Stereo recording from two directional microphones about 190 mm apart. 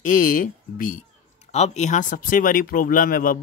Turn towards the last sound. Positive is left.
turn(degrees=45)  # may be behind; listen again after turning